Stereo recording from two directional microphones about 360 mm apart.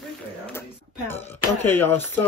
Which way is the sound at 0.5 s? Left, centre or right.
Centre.